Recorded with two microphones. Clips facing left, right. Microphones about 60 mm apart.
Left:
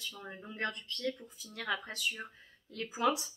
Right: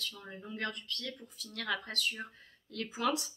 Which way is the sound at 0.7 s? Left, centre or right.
Left.